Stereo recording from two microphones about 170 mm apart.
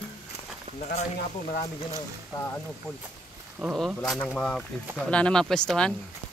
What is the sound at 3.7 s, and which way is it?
Speech, centre (ahead or behind).